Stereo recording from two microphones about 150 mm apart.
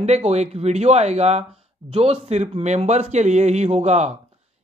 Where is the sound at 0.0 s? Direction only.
45° right (ahead or behind).